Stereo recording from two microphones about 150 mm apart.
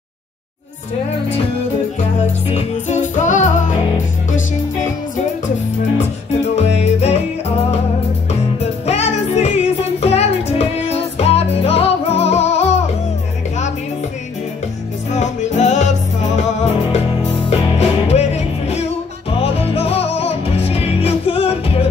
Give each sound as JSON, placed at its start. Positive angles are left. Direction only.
{"t": 2.5, "sound": "music", "side_deg": 55}
{"t": 5.9, "sound": "music", "side_deg": 45}
{"t": 8.8, "sound": "music", "side_deg": 45}
{"t": 15.1, "sound": "music", "side_deg": 50}
{"t": 17.5, "sound": "music", "side_deg": 45}